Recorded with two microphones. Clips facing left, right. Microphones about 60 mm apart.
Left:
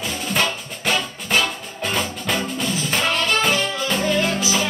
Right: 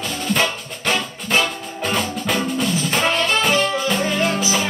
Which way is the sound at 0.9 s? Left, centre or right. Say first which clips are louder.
Right 1 dB; centre.